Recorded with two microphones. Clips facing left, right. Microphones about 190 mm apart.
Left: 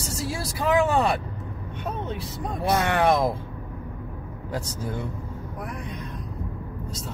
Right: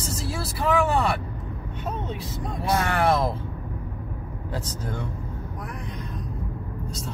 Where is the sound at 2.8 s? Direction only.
20° left (ahead or behind).